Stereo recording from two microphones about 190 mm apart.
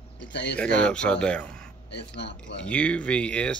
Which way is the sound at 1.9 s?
65° left (ahead or behind).